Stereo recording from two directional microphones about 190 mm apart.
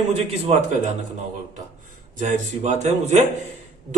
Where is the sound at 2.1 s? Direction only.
40° right (ahead or behind).